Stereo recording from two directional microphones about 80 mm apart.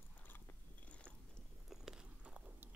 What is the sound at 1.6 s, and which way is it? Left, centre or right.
Biting, centre.